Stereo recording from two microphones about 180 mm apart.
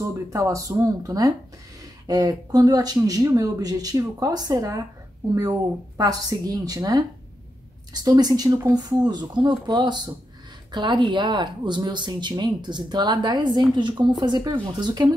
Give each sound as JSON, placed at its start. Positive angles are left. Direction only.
{"t": 0.3, "sound": "speech", "side_deg": -15}